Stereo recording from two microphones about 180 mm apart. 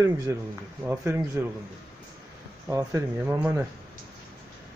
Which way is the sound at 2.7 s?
15° right (ahead or behind).